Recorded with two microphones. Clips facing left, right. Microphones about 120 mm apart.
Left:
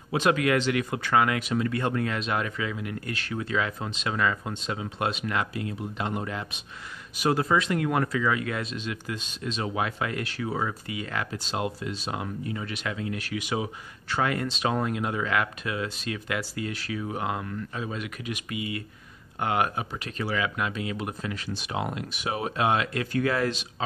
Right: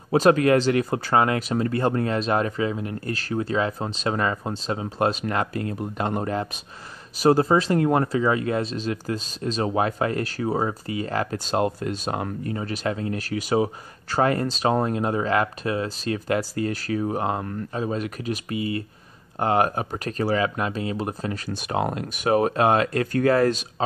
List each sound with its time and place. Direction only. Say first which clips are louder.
0.1 s speech: right 6 dB; 40° right (ahead or behind)